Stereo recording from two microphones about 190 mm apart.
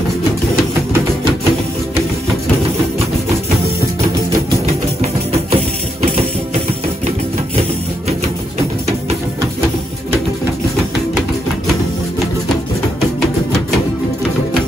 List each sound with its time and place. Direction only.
4.6 s music: 35° right (ahead or behind)